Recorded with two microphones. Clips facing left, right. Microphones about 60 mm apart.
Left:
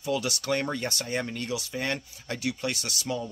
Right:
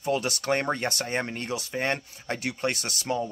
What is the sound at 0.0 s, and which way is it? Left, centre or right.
Speech, right.